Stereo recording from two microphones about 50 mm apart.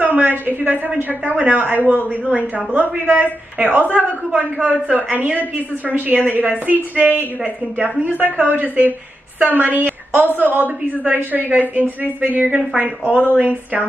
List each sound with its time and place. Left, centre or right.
0.0 s a woman's voice: right
13.1 s speech: left
13.4 s a woman's voice: right